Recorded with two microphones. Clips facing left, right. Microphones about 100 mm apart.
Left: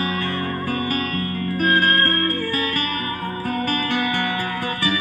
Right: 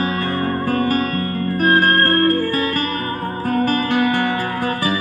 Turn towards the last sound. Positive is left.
turn(degrees=-40)  # may be behind; listen again after turning